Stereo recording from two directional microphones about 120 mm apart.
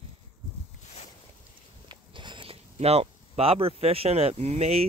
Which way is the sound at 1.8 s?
40° right (ahead or behind).